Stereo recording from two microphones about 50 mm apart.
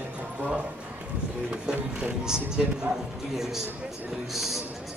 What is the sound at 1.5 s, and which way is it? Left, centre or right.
Speech, centre.